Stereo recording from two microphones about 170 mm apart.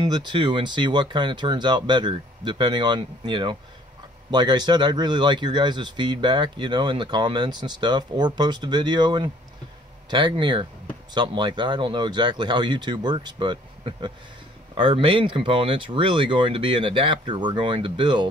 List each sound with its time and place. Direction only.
0.0 s speech: 25° right (ahead or behind)